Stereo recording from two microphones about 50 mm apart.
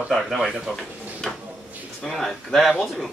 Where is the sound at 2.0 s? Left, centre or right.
Centre.